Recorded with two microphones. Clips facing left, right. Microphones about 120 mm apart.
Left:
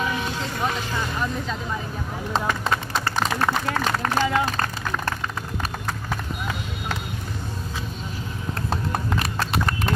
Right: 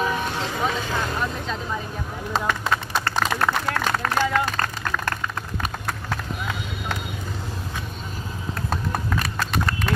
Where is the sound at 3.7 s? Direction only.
15° left (ahead or behind).